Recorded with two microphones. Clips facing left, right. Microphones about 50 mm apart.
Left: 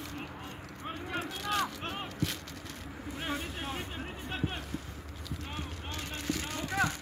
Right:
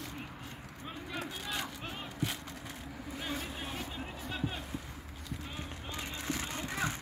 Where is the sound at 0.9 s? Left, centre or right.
Left.